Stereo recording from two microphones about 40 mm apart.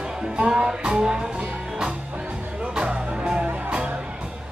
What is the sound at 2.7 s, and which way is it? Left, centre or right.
Music, right.